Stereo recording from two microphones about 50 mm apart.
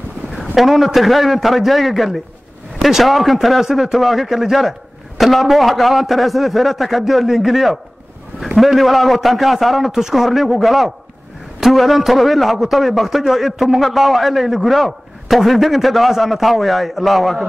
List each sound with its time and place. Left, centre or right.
0.3 s a man's voice: centre